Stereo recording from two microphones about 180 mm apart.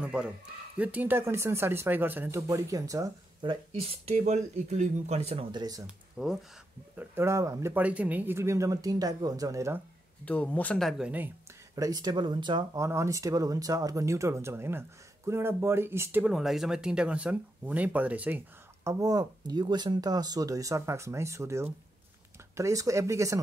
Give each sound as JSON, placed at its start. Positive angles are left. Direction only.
{"t": 0.0, "sound": "a man's voice", "side_deg": -5}
{"t": 4.0, "sound": "speech", "side_deg": -40}
{"t": 5.9, "sound": "speech", "side_deg": -5}
{"t": 7.0, "sound": "speech", "side_deg": -15}
{"t": 10.2, "sound": "speech", "side_deg": 5}
{"t": 11.7, "sound": "speech", "side_deg": -20}
{"t": 18.9, "sound": "speech", "side_deg": -20}